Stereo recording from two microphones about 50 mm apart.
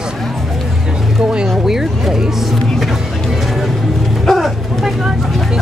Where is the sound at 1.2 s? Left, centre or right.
Centre.